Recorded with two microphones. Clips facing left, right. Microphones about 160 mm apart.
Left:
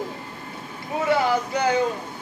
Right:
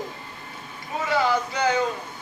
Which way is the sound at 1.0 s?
55° left (ahead or behind).